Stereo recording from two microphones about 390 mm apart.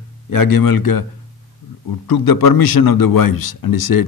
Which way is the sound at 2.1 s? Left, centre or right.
Left.